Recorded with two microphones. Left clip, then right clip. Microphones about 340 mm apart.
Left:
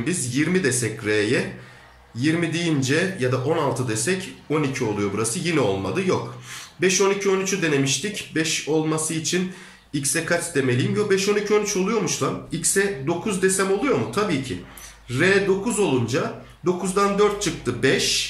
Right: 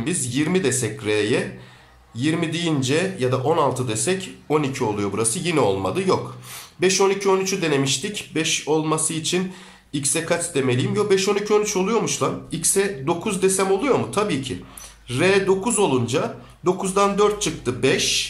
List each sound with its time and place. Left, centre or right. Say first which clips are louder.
0.0 s speech: even; centre